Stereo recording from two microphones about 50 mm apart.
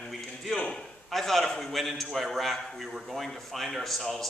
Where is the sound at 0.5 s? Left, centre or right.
Left.